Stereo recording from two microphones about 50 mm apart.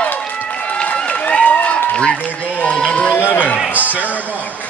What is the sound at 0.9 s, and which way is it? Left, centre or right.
Run, left.